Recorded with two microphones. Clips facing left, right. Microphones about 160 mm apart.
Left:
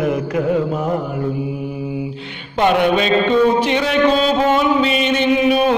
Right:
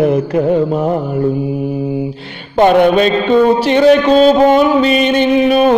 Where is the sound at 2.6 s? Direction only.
40° right (ahead or behind).